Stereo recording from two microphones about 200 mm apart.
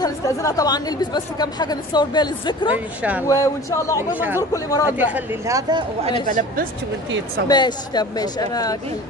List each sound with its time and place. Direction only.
0.0 s speech: 15° left (ahead or behind)
3.0 s speech: 5° right (ahead or behind)
3.3 s speech: 15° left (ahead or behind)
4.1 s speech: 10° right (ahead or behind)
4.4 s speech: 15° left (ahead or behind)
4.9 s speech: 10° right (ahead or behind)
6.2 s a woman's voice: 40° right (ahead or behind)
7.4 s speech: 20° left (ahead or behind)